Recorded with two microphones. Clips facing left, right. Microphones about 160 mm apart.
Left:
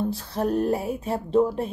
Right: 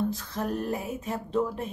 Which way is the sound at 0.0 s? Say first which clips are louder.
Left 4 dB; 35° left (ahead or behind).